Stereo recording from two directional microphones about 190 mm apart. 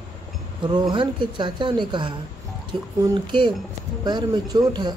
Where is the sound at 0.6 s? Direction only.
25° right (ahead or behind).